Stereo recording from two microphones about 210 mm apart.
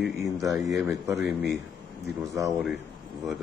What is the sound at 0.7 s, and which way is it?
Speech, 15° right (ahead or behind).